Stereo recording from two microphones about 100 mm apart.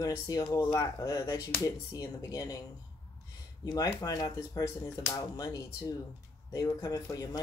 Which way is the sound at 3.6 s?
35° left (ahead or behind).